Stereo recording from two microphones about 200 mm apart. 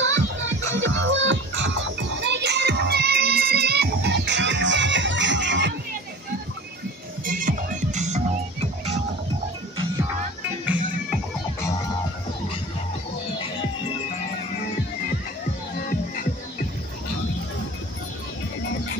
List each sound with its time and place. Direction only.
0.0 s music: 70° right (ahead or behind)
7.2 s music: 40° right (ahead or behind)
10.6 s music: 10° right (ahead or behind)